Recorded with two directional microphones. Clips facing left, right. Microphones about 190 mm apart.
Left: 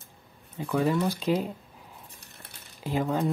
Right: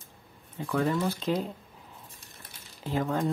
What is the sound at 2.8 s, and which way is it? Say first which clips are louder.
Speech: left 2 dB; 10° left (ahead or behind).